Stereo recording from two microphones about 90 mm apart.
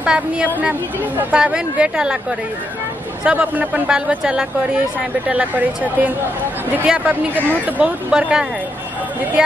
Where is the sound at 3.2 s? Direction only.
15° right (ahead or behind).